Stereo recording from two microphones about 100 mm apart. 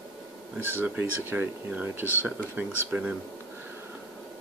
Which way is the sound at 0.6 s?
20° right (ahead or behind).